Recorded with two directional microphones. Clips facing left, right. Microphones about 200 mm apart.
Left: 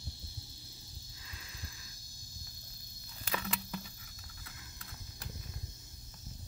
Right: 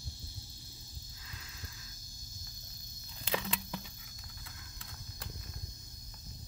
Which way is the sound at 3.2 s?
20° right (ahead or behind).